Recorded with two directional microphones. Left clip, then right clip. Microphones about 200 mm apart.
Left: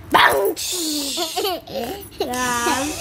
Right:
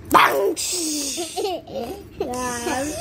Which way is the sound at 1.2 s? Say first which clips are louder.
Left 3 dB; 35° left (ahead or behind).